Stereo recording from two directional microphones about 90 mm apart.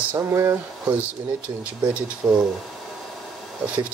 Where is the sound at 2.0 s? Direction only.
10° right (ahead or behind).